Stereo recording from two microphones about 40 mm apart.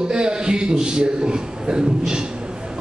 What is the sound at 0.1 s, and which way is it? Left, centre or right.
Speech, right.